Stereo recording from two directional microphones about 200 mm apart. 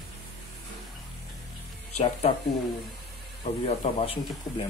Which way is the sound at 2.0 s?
30° left (ahead or behind).